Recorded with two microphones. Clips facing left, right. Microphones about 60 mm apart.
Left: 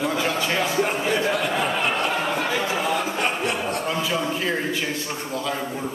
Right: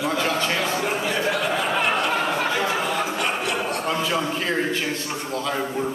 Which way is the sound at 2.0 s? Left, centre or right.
Centre.